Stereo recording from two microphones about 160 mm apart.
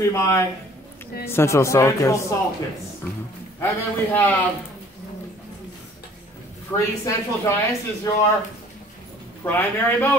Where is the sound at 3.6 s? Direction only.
10° left (ahead or behind).